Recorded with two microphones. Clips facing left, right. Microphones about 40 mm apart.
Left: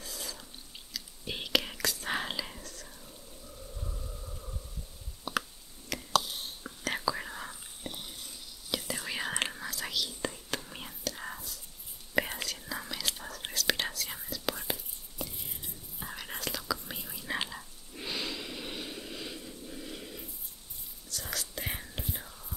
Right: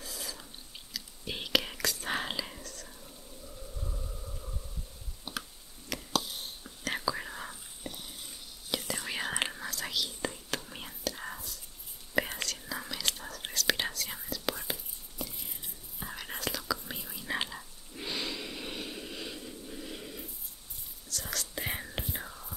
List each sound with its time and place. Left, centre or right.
0.0 s whispering: centre
5.9 s a sound: centre
6.8 s whispering: centre
8.7 s whispering: centre
21.5 s whispering: centre
21.9 s whispering: right